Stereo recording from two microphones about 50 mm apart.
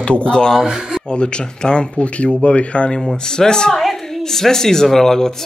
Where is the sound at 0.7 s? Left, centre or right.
Centre.